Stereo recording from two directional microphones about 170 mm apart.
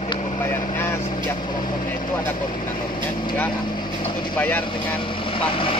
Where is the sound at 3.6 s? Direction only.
25° left (ahead or behind).